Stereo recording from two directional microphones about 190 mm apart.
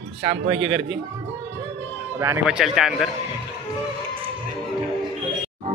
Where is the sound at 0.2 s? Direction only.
30° right (ahead or behind).